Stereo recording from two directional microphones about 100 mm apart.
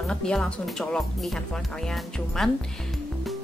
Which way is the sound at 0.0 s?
10° left (ahead or behind).